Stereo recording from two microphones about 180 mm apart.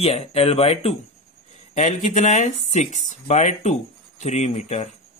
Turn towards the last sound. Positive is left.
turn(degrees=40)  # may be behind; listen again after turning